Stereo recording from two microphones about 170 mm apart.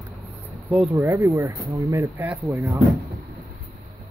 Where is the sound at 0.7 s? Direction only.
10° right (ahead or behind).